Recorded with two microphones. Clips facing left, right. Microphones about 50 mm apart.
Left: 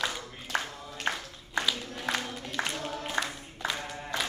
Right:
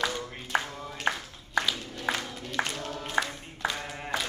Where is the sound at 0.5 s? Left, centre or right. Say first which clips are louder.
Right 3 dB; centre.